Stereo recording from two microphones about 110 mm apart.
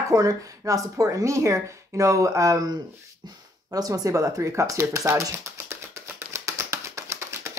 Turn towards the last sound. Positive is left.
turn(degrees=-25)  # may be behind; listen again after turning